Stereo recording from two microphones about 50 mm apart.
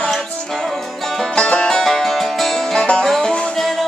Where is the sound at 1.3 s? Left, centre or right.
Left.